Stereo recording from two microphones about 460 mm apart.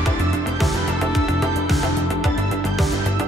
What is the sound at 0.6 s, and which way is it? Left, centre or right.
Music, centre.